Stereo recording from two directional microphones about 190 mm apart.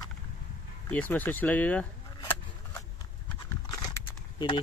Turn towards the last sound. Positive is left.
turn(degrees=25)  # may be behind; listen again after turning